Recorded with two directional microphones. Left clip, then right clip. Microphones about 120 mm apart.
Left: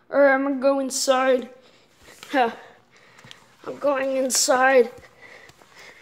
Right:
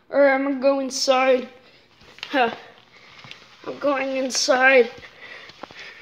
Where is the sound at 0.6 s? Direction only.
45° left (ahead or behind).